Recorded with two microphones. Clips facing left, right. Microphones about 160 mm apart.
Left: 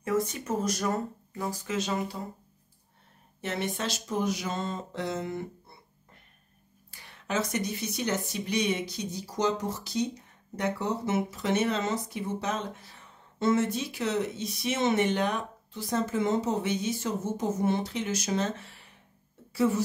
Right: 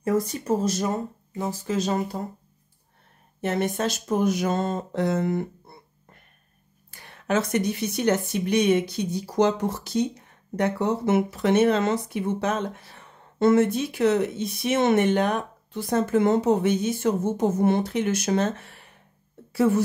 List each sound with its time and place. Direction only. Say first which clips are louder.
0.0 s speech: right 4 dB; 35° right (ahead or behind)
1.7 s speech: right 6 dB; 40° right (ahead or behind)
3.3 s speech: right 7 dB; 50° right (ahead or behind)
6.9 s speech: right 7 dB; 55° right (ahead or behind)